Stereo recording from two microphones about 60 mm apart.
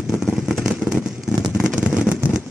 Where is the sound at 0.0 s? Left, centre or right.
Centre.